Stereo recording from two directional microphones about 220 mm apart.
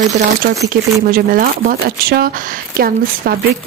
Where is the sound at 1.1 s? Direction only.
40° right (ahead or behind).